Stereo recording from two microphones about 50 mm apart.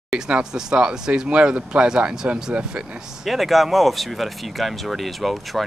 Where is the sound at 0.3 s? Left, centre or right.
Centre.